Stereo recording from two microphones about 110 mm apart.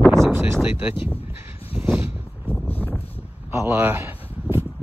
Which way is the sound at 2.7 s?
15° left (ahead or behind).